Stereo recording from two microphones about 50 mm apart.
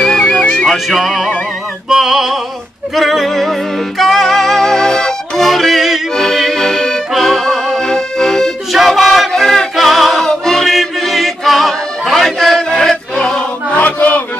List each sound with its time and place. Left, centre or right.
0.0 s music: centre
0.8 s music: centre
6.1 s accordion: centre
8.7 s music: centre
13.7 s chant: left